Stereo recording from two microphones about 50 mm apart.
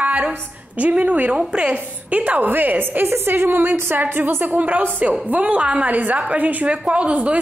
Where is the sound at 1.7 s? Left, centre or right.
Right.